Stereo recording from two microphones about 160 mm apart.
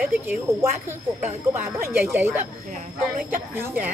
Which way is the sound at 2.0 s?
15° right (ahead or behind).